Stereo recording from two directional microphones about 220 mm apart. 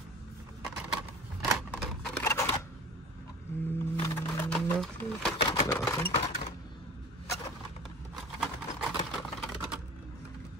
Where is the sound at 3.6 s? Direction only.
10° left (ahead or behind).